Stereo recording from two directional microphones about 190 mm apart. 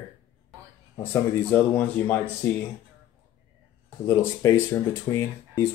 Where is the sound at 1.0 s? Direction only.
10° left (ahead or behind).